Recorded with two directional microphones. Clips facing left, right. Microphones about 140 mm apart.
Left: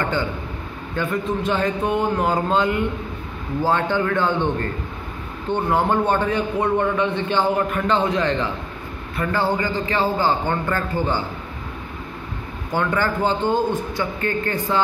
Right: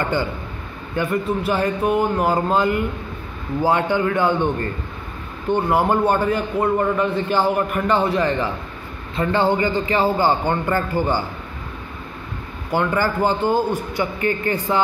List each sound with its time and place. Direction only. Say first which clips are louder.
0.9 s a man's voice: right 2 dB; 10° right (ahead or behind)
5.5 s a man's voice: right 2 dB; 10° right (ahead or behind)
9.1 s a man's voice: right 3 dB; 20° right (ahead or behind)
12.7 s a man's voice: right 2 dB; 10° right (ahead or behind)